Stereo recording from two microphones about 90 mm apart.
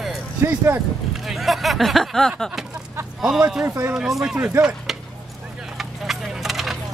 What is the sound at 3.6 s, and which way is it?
Speech, 25° right (ahead or behind).